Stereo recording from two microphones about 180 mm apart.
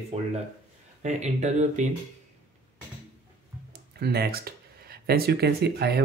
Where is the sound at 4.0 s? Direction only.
60° right (ahead or behind).